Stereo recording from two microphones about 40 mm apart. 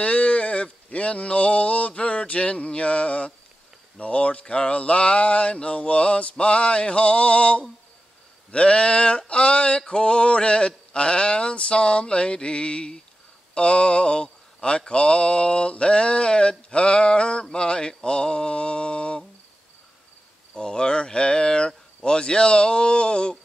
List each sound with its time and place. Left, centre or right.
0.0 s a sound: left
8.5 s mantra: left
20.5 s speech: centre